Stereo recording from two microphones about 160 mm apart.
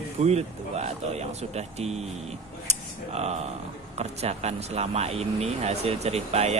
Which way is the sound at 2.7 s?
40° right (ahead or behind).